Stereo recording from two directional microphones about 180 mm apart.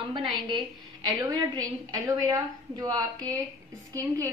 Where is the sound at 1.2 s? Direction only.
20° right (ahead or behind).